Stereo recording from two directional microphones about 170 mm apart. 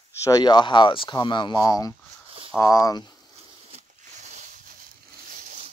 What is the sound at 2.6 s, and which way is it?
Speech, 20° left (ahead or behind).